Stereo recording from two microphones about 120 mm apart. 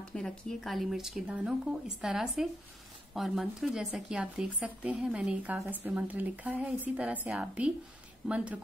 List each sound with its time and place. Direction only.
0.1 s speech: 5° left (ahead or behind)